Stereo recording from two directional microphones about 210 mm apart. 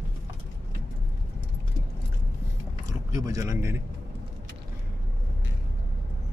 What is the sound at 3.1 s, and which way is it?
Speech, 15° right (ahead or behind).